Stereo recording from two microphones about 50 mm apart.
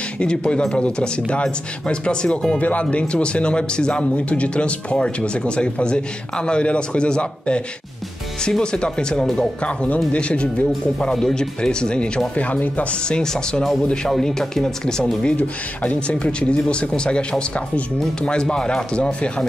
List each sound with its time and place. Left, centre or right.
0.2 s speech: centre
11.0 s speech: centre; by 12.8 s left
13.0 s speech: centre
15.2 s speech: left